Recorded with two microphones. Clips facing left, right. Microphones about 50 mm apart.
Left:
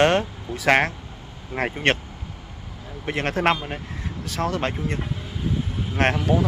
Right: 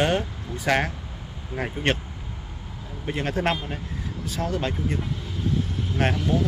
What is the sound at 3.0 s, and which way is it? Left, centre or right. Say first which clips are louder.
Speech: left 3 dB; left.